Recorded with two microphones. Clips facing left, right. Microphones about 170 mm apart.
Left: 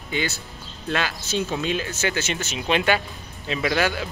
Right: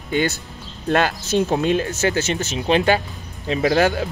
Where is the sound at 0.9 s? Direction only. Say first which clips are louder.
Right 7 dB; 50° right (ahead or behind).